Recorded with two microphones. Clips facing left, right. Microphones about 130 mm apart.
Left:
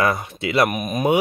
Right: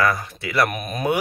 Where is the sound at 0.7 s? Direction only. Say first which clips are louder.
Left 4 dB; 10° left (ahead or behind).